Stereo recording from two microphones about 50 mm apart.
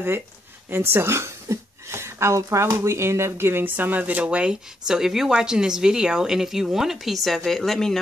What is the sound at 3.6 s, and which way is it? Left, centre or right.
Speech, right.